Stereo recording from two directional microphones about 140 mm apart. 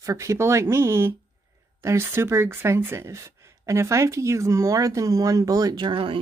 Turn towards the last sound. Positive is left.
turn(degrees=-35)  # may be behind; listen again after turning